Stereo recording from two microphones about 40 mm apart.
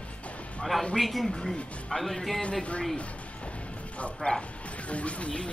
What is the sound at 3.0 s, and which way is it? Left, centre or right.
Music, left.